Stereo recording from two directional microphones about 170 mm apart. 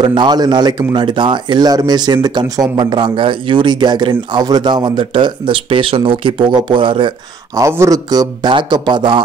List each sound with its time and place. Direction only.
0.0 s speech: 25° right (ahead or behind)